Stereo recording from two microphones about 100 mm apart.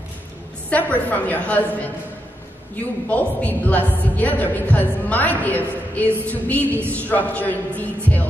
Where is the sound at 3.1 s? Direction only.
15° left (ahead or behind).